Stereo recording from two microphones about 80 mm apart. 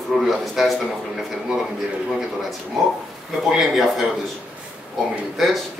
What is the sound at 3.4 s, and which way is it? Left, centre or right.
Speech, centre.